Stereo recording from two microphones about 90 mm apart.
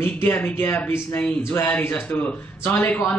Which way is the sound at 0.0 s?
25° left (ahead or behind).